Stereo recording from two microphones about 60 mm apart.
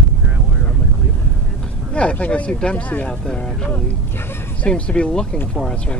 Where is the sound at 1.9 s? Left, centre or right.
Centre.